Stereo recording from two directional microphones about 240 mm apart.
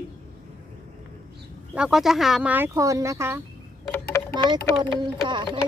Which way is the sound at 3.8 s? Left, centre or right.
Centre.